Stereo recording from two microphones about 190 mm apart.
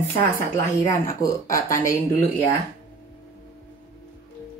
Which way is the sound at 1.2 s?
15° left (ahead or behind).